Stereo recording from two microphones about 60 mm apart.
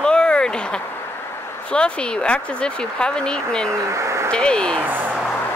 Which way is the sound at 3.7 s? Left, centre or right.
Right.